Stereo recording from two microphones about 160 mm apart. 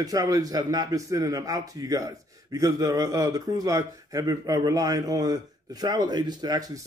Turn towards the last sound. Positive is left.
turn(degrees=-25)  # may be behind; listen again after turning